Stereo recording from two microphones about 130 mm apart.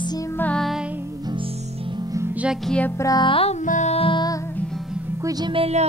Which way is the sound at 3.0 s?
30° left (ahead or behind).